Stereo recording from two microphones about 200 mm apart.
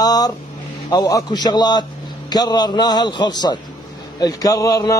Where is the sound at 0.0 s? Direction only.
20° left (ahead or behind).